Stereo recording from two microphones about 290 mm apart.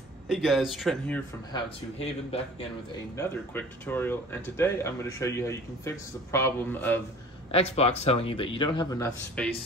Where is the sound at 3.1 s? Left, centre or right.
Centre.